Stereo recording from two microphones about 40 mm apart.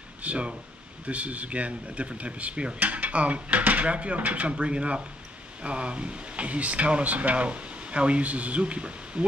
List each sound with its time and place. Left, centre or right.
0.2 s speech: right